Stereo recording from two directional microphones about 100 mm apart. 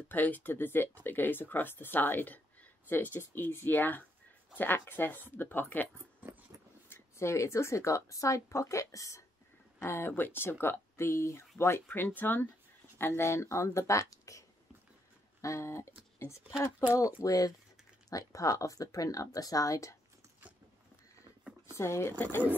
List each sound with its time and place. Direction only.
0.1 s speech: 15° left (ahead or behind)
6.9 s speech: 30° left (ahead or behind)
15.4 s speech: 30° left (ahead or behind)
21.7 s speech: 30° left (ahead or behind)